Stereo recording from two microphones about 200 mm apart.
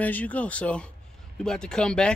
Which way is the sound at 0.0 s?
5° left (ahead or behind).